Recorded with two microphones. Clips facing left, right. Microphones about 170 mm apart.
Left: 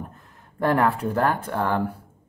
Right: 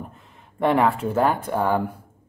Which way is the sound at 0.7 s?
Centre (ahead or behind).